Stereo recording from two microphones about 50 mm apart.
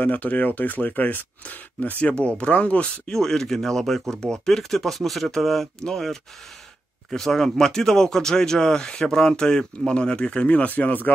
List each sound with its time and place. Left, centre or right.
0.0 s speech: left
3.1 s speech: centre; by 11.1 s left